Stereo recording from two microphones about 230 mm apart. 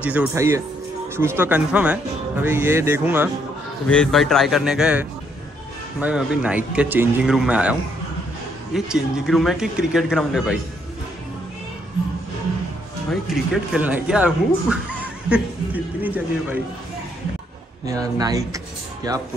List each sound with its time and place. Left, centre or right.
0.0 s speech: centre
3.8 s speech: centre
8.7 s speech: centre
13.1 s speech: centre
17.8 s speech: centre